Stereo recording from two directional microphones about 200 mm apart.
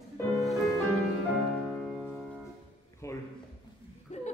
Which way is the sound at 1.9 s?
Centre (ahead or behind).